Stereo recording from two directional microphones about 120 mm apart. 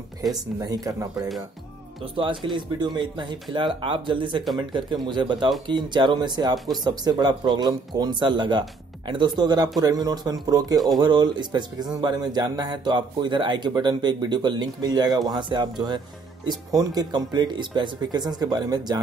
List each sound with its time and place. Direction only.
0.3 s speech: 30° right (ahead or behind)
2.1 s speech: 45° right (ahead or behind)